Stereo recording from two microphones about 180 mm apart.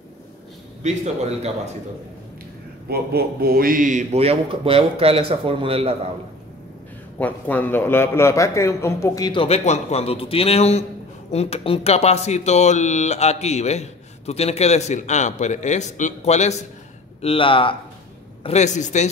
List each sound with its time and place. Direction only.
0.8 s a man's voice: 40° right (ahead or behind)
2.9 s a man's voice: 60° right (ahead or behind); by 5.9 s 30° right (ahead or behind)
7.2 s a man's voice: 10° left (ahead or behind); by 19.0 s 40° left (ahead or behind)